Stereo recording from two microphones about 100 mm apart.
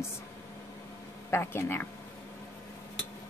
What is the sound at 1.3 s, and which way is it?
Speech, 25° left (ahead or behind).